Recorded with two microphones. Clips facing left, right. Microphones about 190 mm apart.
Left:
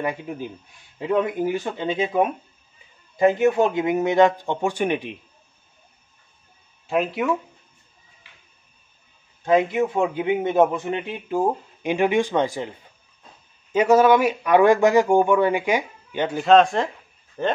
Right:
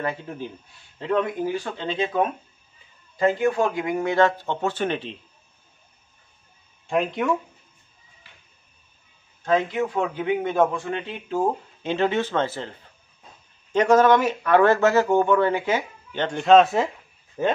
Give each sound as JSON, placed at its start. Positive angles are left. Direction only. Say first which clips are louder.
{"t": 0.0, "sound": "a man's voice", "louder": "left 2 dB", "side_deg": 15}
{"t": 6.9, "sound": "speech", "louder": "left 1 dB", "side_deg": 5}
{"t": 9.4, "sound": "a man's voice", "louder": "left 3 dB", "side_deg": 15}